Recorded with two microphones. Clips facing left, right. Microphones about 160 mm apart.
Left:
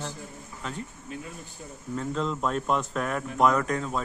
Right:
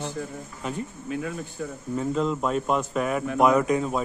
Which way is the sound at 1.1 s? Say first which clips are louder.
Right 8 dB; 90° right.